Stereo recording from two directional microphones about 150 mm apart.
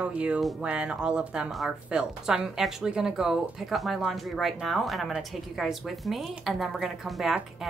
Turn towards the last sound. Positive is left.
turn(degrees=0)  # may be behind; listen again after turning